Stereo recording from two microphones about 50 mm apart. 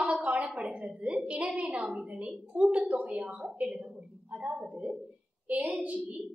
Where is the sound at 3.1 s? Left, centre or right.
Right.